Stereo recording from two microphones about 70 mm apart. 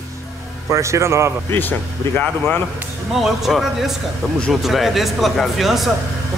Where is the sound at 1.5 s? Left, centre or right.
Left.